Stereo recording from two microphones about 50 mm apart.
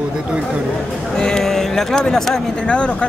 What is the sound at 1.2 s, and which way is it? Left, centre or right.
Speech, centre.